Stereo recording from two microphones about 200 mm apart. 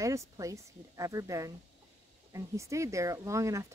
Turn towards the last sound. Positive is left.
turn(degrees=-15)  # may be behind; listen again after turning